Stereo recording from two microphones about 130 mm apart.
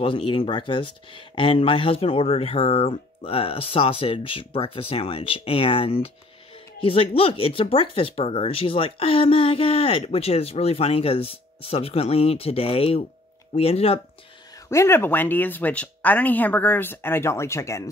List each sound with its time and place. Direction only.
0.0 s speech: 45° left (ahead or behind)
14.7 s speech: 20° left (ahead or behind)